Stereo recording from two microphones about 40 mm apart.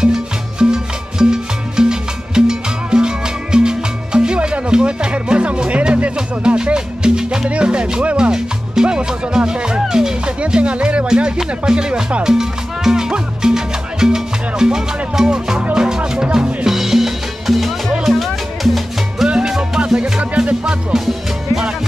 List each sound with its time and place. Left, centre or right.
0.0 s music: centre
8.2 s music: right
10.4 s speech: right
12.2 s music: centre
19.2 s music: right
20.6 s music: centre